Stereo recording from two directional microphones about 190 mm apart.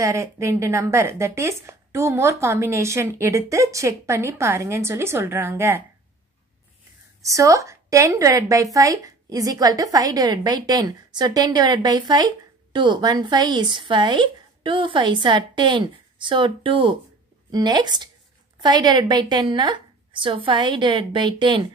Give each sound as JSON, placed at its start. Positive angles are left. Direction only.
{"t": 0.0, "sound": "a woman's voice", "side_deg": -15}
{"t": 7.2, "sound": "a woman's voice", "side_deg": -15}